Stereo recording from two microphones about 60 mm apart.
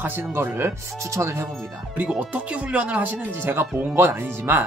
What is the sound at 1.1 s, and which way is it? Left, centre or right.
Speech, right.